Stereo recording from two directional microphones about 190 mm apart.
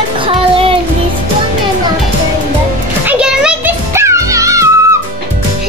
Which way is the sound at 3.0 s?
5° right (ahead or behind).